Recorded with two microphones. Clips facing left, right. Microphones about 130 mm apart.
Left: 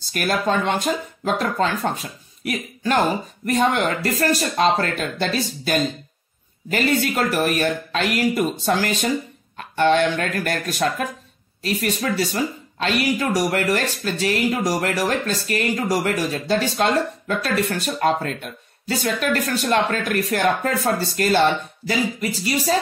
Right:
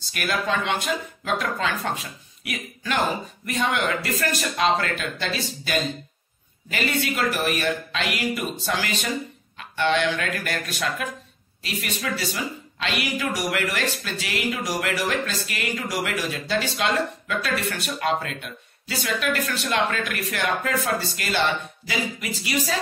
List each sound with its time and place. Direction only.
0.1 s speech: 40° left (ahead or behind)